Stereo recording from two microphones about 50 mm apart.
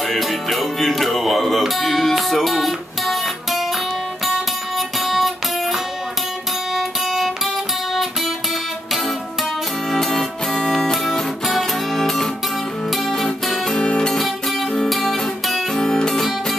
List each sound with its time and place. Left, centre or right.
0.1 s music: centre
4.7 s music: centre
9.8 s music: centre
13.7 s guitar: centre
14.9 s music: centre
15.7 s music: centre